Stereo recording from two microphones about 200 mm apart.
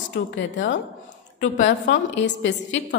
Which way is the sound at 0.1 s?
65° left (ahead or behind).